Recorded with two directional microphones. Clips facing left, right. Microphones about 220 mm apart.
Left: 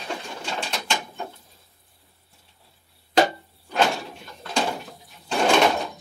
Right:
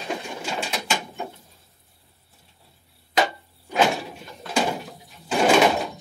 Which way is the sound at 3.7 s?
5° right (ahead or behind).